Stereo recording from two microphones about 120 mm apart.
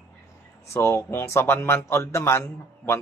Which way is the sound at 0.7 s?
20° left (ahead or behind).